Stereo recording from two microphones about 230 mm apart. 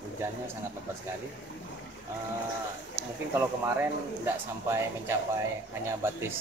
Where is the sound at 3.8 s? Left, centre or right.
Centre.